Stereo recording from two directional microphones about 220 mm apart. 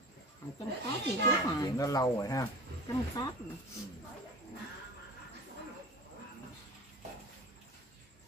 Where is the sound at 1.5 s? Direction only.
15° left (ahead or behind).